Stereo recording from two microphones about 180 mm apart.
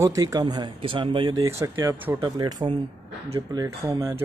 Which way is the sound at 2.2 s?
25° right (ahead or behind).